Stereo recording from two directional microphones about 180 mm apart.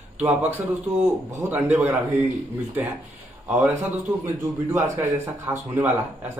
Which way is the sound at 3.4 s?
5° right (ahead or behind).